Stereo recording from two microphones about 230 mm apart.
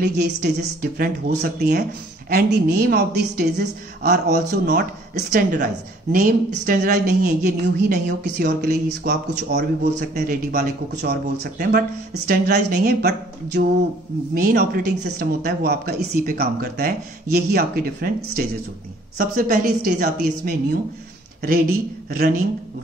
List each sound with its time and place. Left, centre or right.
0.0 s speech: right
6.1 s speech: right
14.3 s speech: right